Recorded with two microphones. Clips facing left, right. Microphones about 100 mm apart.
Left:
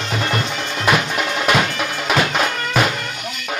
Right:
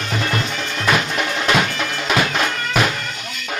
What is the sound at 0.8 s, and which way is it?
Music, 10° left (ahead or behind).